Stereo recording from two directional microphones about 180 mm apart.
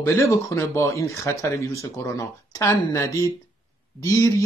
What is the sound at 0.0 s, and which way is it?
Speech, 15° left (ahead or behind).